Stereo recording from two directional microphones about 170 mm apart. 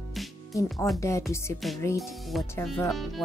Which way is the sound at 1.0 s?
15° left (ahead or behind).